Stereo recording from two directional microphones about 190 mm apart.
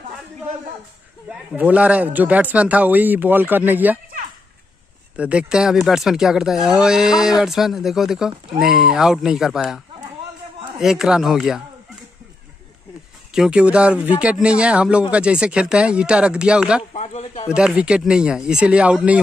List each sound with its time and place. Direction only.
1.3 s speech: 5° right (ahead or behind)
5.1 s speech: 5° right (ahead or behind)
10.8 s speech: centre (ahead or behind)
13.3 s speech: 5° right (ahead or behind)
16.9 s speech: 35° left (ahead or behind)
17.6 s speech: 5° right (ahead or behind)